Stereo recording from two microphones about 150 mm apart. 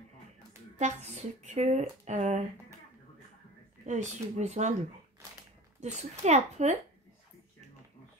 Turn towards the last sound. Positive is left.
turn(degrees=-50)  # may be behind; listen again after turning